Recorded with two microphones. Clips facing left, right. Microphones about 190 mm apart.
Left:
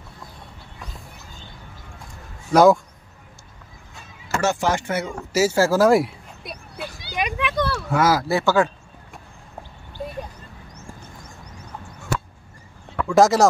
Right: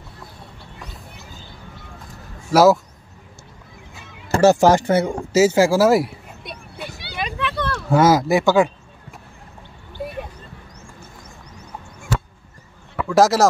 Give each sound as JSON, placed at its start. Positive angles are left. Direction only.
{"t": 2.5, "sound": "speech", "side_deg": -5}
{"t": 4.3, "sound": "speech", "side_deg": -35}
{"t": 5.1, "sound": "speech", "side_deg": -20}
{"t": 7.2, "sound": "a sound", "side_deg": 15}
{"t": 7.9, "sound": "speech", "side_deg": -25}
{"t": 12.9, "sound": "speech", "side_deg": 0}